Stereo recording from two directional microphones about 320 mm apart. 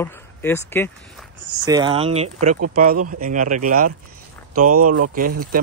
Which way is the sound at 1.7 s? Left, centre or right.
Centre.